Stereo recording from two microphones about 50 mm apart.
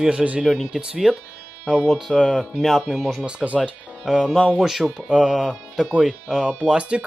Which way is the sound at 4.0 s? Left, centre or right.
Centre.